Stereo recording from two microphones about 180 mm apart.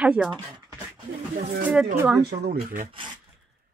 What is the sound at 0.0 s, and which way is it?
Speech, 5° right (ahead or behind).